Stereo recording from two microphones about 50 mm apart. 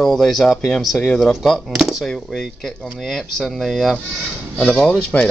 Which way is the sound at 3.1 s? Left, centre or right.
Centre.